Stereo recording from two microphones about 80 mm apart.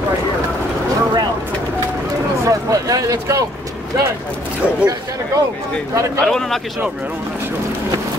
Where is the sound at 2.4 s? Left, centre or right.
Right.